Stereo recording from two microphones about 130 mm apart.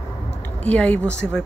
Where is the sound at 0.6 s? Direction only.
10° left (ahead or behind).